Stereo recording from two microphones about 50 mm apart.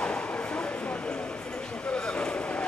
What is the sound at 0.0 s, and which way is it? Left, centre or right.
Clip-clop, left.